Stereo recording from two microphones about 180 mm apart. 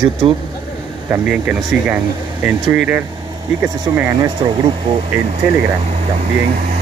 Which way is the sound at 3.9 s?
15° right (ahead or behind).